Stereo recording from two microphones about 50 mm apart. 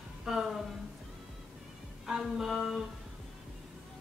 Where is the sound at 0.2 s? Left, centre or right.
Centre.